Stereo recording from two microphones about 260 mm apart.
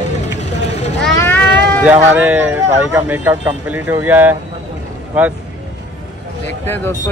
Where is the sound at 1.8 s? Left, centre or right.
Centre.